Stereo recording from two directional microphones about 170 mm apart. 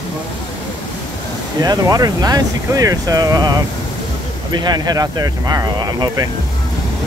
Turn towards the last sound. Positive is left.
turn(degrees=-20)  # may be behind; listen again after turning